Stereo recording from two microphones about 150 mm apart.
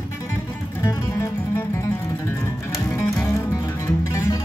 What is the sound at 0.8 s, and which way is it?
Music, 15° left (ahead or behind).